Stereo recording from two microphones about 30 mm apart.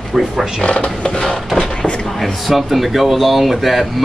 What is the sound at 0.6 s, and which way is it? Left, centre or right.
Speech, left.